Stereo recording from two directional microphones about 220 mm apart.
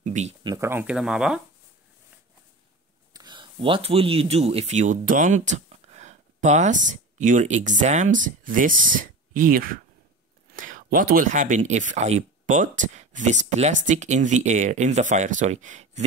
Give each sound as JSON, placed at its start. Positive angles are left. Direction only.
{"t": 0.0, "sound": "speech", "side_deg": -30}
{"t": 3.1, "sound": "speech", "side_deg": -15}